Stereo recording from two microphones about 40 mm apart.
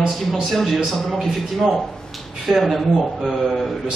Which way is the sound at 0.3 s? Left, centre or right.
Centre.